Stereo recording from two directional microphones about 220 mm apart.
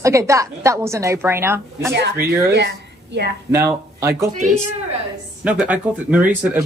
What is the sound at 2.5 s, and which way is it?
Speech, 50° right (ahead or behind).